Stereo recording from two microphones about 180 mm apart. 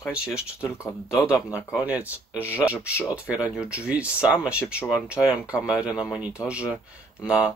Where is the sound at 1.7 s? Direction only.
10° right (ahead or behind).